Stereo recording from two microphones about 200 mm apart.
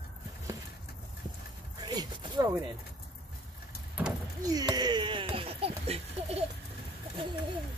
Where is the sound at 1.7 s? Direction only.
20° right (ahead or behind).